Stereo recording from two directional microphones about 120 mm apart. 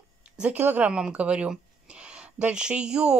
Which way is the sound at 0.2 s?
10° right (ahead or behind).